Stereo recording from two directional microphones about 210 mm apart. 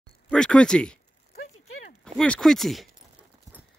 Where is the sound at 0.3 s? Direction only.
5° left (ahead or behind).